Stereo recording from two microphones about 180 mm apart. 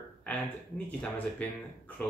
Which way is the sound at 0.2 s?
10° left (ahead or behind).